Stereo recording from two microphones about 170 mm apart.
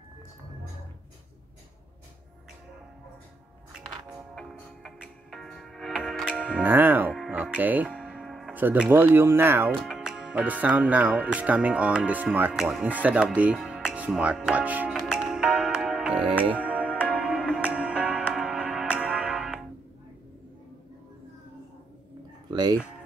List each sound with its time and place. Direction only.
4.4 s music: centre (ahead or behind)
8.5 s speech: 10° right (ahead or behind)
9.8 s speech: centre (ahead or behind)
16.3 s music: 10° right (ahead or behind)
22.5 s music: 25° right (ahead or behind)